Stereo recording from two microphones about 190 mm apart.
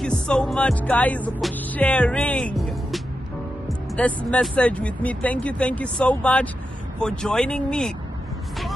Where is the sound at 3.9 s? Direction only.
5° left (ahead or behind).